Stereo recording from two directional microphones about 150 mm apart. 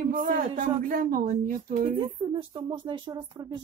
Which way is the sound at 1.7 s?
35° right (ahead or behind).